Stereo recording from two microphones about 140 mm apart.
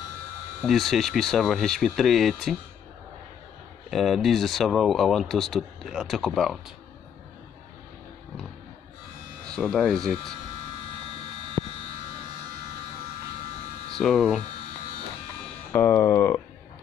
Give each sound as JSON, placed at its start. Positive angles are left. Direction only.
{"t": 0.6, "sound": "speech", "side_deg": 0}
{"t": 3.9, "sound": "speech", "side_deg": 0}
{"t": 9.7, "sound": "speech", "side_deg": 5}
{"t": 13.9, "sound": "hum", "side_deg": 0}
{"t": 15.7, "sound": "speech", "side_deg": 15}